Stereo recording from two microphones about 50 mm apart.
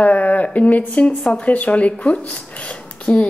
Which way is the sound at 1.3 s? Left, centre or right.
Left.